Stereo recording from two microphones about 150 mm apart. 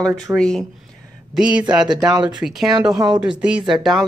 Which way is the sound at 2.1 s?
30° right (ahead or behind).